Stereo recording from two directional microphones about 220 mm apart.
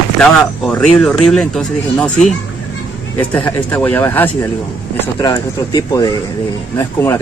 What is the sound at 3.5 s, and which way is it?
Speech, 5° left (ahead or behind).